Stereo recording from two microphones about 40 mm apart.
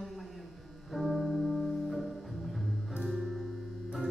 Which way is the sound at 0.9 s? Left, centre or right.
Centre.